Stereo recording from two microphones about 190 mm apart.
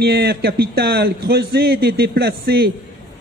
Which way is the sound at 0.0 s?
55° right (ahead or behind).